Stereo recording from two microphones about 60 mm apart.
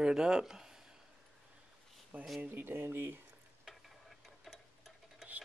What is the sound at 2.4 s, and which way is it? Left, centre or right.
Speech, right.